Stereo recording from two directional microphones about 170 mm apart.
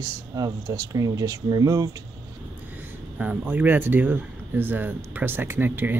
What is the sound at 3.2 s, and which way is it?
Speech, 10° right (ahead or behind).